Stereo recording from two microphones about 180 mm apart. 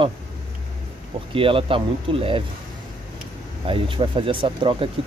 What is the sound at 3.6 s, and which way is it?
Speech, 30° right (ahead or behind).